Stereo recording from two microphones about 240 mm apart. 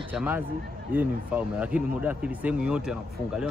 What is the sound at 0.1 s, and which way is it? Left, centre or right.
A man's voice, centre.